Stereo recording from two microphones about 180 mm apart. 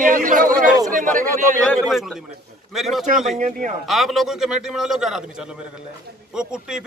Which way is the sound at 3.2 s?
45° right (ahead or behind).